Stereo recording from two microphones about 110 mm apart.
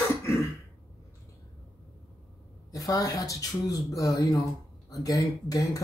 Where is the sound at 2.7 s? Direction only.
30° left (ahead or behind).